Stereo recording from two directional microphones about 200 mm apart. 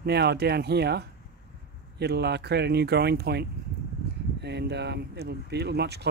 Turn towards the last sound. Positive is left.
turn(degrees=-55)  # may be behind; listen again after turning